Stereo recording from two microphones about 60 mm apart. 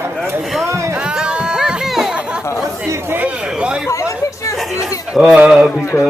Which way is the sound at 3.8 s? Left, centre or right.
Left.